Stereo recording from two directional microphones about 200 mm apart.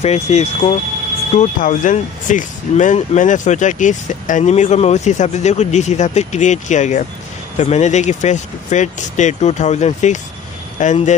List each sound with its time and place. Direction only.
0.0 s speech: 35° left (ahead or behind)